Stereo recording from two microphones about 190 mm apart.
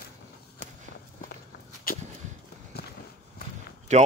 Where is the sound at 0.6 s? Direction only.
60° left (ahead or behind).